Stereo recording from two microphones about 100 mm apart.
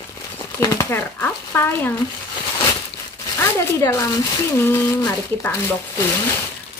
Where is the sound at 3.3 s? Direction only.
30° left (ahead or behind).